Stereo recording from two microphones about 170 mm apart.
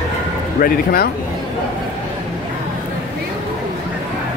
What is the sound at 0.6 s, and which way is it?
Speech, 60° left (ahead or behind).